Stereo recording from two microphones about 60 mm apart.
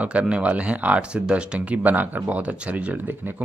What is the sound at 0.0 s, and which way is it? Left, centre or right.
Speech, right.